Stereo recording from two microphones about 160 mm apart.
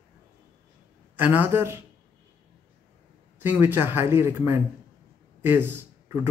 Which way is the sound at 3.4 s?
10° right (ahead or behind).